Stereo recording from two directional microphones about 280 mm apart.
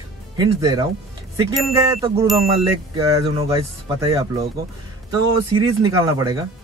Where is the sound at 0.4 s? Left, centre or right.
Centre.